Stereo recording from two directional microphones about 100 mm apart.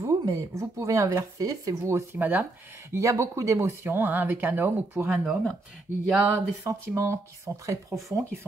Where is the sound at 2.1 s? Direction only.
20° right (ahead or behind).